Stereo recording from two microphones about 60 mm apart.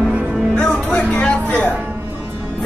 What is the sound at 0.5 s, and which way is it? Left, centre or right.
Music, centre.